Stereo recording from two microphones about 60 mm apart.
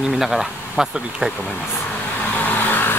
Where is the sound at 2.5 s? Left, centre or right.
Left.